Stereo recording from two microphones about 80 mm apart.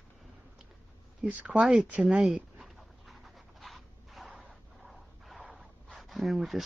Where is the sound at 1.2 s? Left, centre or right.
Centre.